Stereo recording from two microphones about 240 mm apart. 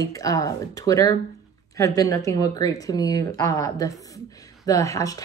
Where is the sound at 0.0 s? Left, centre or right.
Centre.